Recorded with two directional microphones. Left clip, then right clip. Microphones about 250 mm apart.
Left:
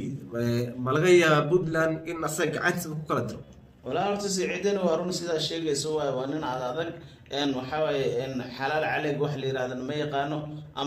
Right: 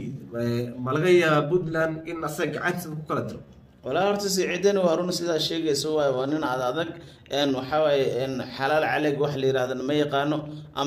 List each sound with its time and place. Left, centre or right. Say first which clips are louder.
0.4 s speech: right 1 dB; centre
3.9 s a man's voice: right 4 dB; right